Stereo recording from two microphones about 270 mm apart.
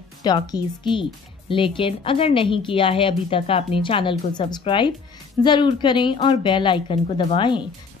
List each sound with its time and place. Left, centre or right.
0.2 s a woman's voice: centre